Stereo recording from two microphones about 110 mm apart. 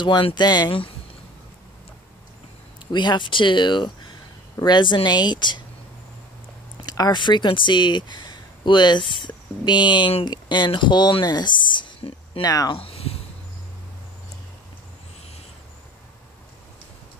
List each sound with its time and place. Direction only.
0.0 s speech: 45° left (ahead or behind)
2.9 s speech: 45° left (ahead or behind)
6.8 s speech: 40° left (ahead or behind)
12.7 s a sound: 60° left (ahead or behind)